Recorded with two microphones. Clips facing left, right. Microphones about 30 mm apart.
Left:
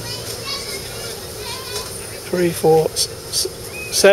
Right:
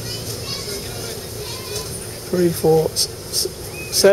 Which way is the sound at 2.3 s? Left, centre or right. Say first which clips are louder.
Left 1 dB; left.